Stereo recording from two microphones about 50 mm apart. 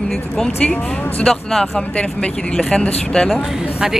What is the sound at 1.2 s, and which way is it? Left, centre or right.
Speech, centre.